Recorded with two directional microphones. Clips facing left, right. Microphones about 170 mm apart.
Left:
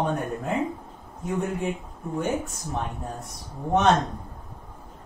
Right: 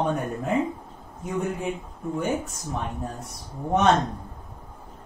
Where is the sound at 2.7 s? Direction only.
Centre (ahead or behind).